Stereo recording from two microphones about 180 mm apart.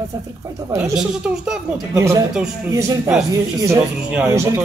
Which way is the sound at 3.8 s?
5° right (ahead or behind).